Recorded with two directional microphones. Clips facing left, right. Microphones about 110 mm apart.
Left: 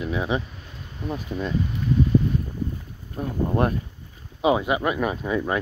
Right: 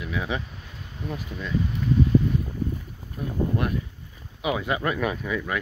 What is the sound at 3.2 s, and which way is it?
Speech, 35° left (ahead or behind).